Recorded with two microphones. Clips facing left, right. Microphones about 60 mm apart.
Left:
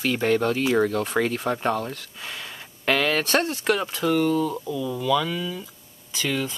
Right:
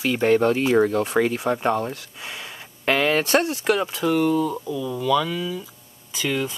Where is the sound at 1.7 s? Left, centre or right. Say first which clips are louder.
Right 3 dB; right; by 5.6 s centre.